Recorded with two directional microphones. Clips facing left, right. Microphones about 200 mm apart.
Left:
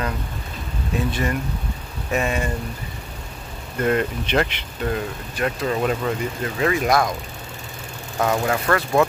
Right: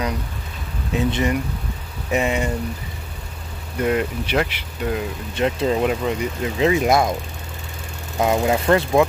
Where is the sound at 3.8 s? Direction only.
10° right (ahead or behind).